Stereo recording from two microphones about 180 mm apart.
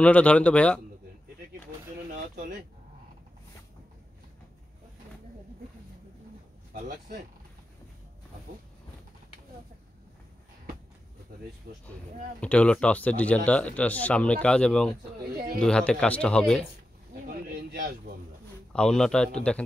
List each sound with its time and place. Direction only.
0.0 s speech: 5° left (ahead or behind)
11.7 s speech: 55° right (ahead or behind)
12.4 s speech: 5° left (ahead or behind)
17.5 s speech: 50° right (ahead or behind)
18.7 s speech: 5° left (ahead or behind)